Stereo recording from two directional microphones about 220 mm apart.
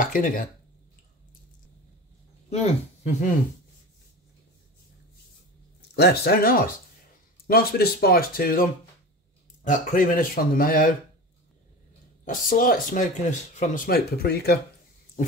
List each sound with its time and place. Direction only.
0.0 s speech: 35° left (ahead or behind)
2.5 s speech: 30° left (ahead or behind)
5.9 s speech: 45° left (ahead or behind)
9.7 s speech: 40° left (ahead or behind)
12.3 s speech: 40° left (ahead or behind)